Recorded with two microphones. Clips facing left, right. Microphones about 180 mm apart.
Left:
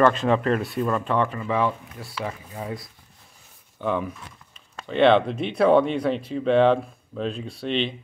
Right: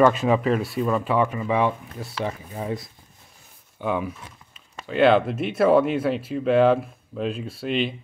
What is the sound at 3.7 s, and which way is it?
Speech, 10° right (ahead or behind).